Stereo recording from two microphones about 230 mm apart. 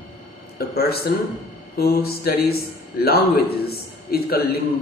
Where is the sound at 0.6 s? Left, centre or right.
Left.